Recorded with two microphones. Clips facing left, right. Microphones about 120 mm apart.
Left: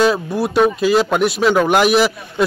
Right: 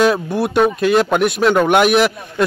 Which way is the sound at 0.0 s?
Centre (ahead or behind).